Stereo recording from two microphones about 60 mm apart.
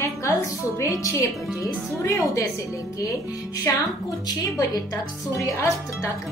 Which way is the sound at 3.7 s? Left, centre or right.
Left.